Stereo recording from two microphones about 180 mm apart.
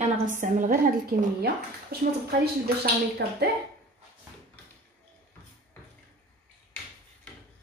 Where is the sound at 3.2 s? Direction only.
70° right (ahead or behind).